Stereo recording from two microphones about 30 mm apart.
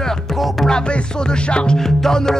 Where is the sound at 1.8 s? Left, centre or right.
Centre.